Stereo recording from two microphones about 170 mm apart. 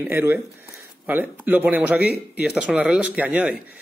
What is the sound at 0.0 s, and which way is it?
Speech, 10° right (ahead or behind).